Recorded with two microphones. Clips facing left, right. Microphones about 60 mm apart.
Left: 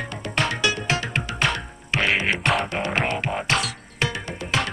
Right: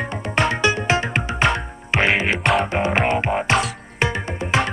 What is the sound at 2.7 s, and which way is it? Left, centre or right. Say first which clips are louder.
Music: right 5 dB; right.